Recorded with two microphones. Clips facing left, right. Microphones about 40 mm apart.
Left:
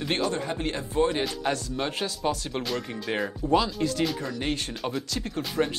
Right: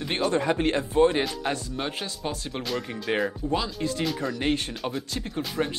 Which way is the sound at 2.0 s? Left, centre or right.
Centre.